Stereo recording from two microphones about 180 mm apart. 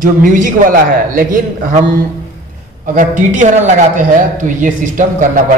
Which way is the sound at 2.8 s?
45° right (ahead or behind).